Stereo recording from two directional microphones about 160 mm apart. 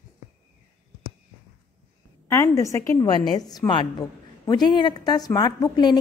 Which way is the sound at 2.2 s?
15° left (ahead or behind).